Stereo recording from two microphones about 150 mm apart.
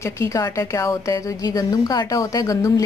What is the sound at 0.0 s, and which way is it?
A woman's voice, 20° left (ahead or behind).